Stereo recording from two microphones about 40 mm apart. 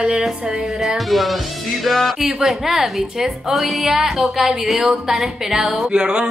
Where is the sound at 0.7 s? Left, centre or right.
Centre.